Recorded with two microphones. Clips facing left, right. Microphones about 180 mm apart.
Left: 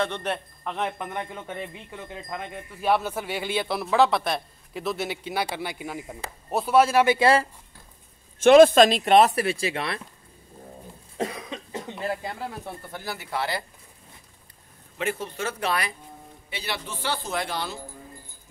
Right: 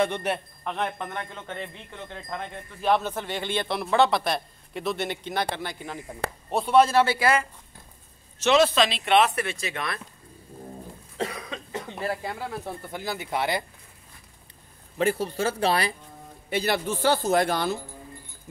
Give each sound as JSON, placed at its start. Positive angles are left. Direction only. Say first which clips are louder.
{"t": 0.0, "sound": "a man's voice", "louder": "right 2 dB", "side_deg": -10}
{"t": 0.7, "sound": "speech", "louder": "left 1 dB", "side_deg": 5}
{"t": 7.2, "sound": "speech", "louder": "left 3 dB", "side_deg": 30}
{"t": 8.4, "sound": "speech", "louder": "left 7 dB", "side_deg": 50}
{"t": 11.1, "sound": "cough", "louder": "left 1 dB", "side_deg": 20}
{"t": 12.9, "sound": "speech", "louder": "right 2 dB", "side_deg": -20}
{"t": 15.0, "sound": "speech", "louder": "right 5 dB", "side_deg": -35}
{"t": 16.4, "sound": "speech", "louder": "right 9 dB", "side_deg": -45}